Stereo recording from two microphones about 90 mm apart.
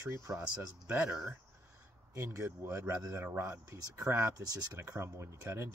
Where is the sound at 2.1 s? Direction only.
35° right (ahead or behind).